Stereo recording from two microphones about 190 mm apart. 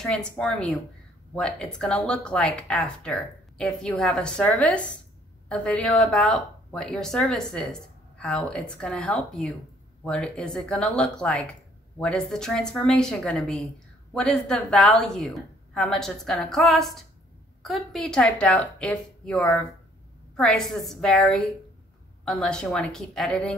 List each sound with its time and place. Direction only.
0.0 s a woman's voice: 5° left (ahead or behind)